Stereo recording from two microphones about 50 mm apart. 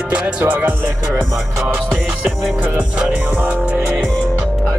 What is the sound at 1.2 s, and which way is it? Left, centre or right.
Speech, centre.